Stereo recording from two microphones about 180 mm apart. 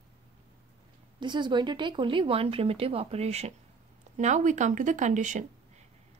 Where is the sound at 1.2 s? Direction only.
25° right (ahead or behind).